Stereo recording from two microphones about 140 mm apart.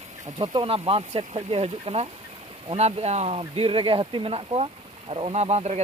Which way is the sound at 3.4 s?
40° right (ahead or behind).